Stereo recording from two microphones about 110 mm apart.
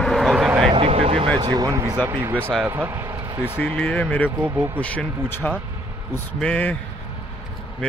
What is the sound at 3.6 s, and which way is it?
Speech, 10° left (ahead or behind).